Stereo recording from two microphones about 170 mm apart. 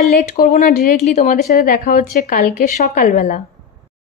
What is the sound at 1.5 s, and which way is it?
A woman's voice, 55° left (ahead or behind).